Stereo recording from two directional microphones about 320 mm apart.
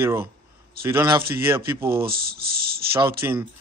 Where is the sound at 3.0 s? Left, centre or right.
Centre.